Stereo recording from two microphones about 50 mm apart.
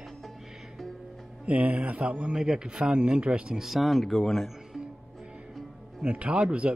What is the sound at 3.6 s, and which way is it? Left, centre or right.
Speech, centre.